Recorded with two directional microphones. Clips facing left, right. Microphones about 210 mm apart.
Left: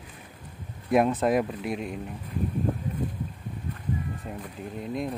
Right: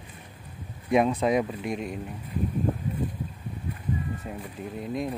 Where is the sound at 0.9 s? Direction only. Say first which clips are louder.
Even; centre (ahead or behind).